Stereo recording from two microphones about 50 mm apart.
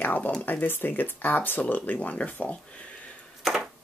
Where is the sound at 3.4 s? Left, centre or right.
Centre.